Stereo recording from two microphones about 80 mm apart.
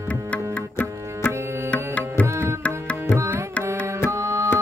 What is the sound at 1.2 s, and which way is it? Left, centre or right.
Music, centre.